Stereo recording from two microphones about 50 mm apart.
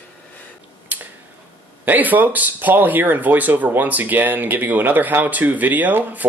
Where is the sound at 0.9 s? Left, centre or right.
Right.